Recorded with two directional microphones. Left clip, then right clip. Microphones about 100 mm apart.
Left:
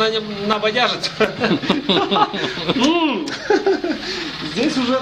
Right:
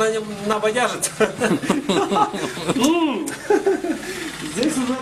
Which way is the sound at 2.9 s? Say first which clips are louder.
Left 2 dB; 15° left (ahead or behind).